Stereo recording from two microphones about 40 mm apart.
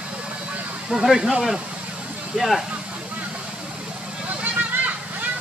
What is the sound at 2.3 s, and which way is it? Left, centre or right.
Speech, centre.